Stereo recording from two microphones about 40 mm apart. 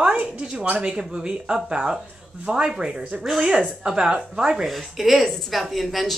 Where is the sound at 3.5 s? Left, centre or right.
Centre.